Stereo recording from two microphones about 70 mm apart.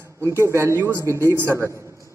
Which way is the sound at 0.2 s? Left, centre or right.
Right.